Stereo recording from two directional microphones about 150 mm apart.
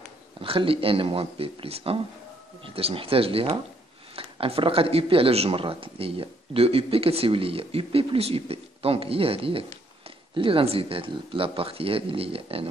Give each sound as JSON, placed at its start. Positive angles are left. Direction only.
{"t": 0.4, "sound": "speech", "side_deg": -35}